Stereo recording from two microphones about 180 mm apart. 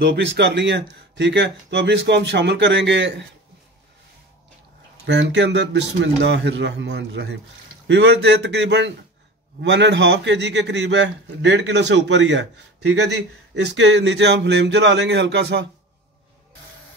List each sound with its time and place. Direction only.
0.0 s a man's voice: 80° right
5.0 s a man's voice: 80° right